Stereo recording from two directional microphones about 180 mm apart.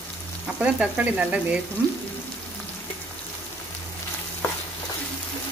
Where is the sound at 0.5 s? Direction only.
5° right (ahead or behind).